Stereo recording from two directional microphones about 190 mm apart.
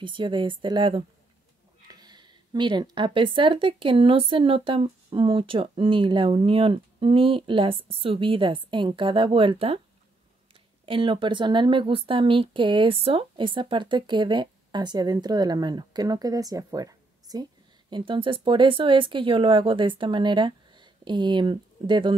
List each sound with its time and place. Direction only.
0.0 s a woman's voice: 25° right (ahead or behind)